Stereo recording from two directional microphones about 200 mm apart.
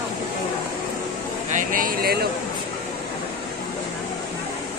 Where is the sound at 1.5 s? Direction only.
40° right (ahead or behind).